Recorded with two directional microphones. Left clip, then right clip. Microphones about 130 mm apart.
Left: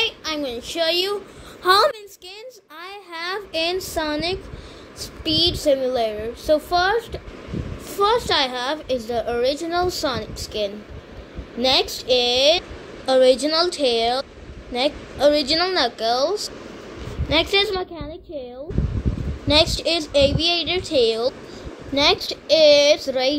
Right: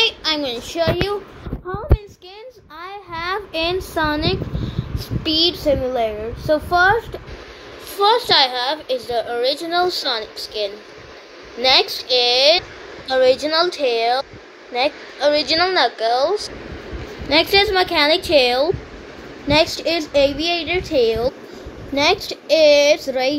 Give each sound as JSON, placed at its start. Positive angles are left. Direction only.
{"t": 0.0, "sound": "child singing", "side_deg": 5}
{"t": 0.4, "sound": "child singing", "side_deg": 20}
{"t": 2.8, "sound": "a woman's voice", "side_deg": 15}
{"t": 5.2, "sound": "a woman's voice", "side_deg": 10}